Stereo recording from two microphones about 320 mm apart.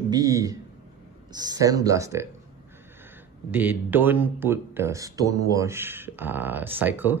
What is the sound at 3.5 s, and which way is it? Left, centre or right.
Speech, centre.